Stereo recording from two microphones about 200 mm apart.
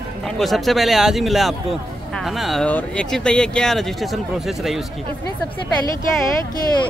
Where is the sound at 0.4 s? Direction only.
Centre (ahead or behind).